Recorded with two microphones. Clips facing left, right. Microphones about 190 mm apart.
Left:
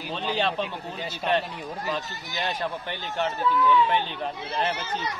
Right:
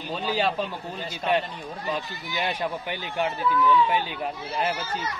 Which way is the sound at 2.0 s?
45° left (ahead or behind).